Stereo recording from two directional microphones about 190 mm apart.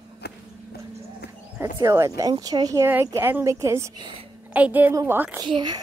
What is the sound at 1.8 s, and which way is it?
Speech, 15° right (ahead or behind).